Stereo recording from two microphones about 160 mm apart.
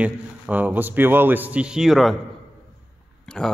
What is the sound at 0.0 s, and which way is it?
A man's voice, 10° right (ahead or behind).